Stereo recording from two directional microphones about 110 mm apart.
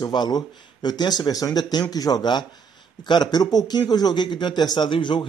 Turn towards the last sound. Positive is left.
turn(degrees=45)  # may be behind; listen again after turning